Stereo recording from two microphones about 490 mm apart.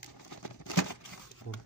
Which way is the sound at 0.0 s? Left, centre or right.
Left.